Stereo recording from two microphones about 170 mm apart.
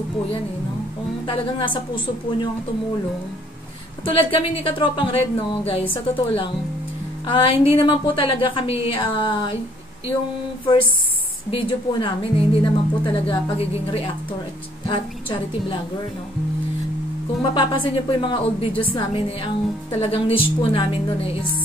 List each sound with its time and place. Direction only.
1.2 s a woman's voice: 30° left (ahead or behind)
4.0 s a woman's voice: 30° left (ahead or behind)
11.5 s a woman's voice: 35° left (ahead or behind)
17.6 s a woman's voice: 30° left (ahead or behind)